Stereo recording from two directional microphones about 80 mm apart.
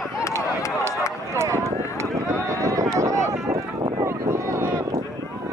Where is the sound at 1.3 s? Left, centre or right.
Right.